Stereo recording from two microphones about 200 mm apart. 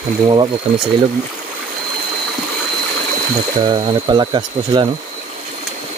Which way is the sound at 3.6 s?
20° right (ahead or behind).